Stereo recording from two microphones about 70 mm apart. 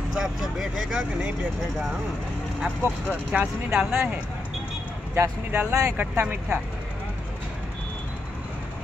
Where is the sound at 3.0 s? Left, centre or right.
Right.